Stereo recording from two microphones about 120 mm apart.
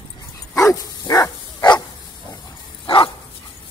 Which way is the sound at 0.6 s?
25° left (ahead or behind).